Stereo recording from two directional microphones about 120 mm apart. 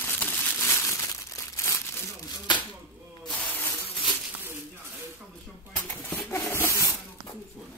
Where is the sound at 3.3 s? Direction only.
10° left (ahead or behind).